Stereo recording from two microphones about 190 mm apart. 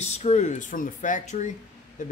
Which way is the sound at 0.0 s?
35° left (ahead or behind).